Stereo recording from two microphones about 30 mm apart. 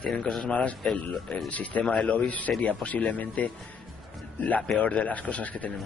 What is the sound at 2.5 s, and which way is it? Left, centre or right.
Speech, centre.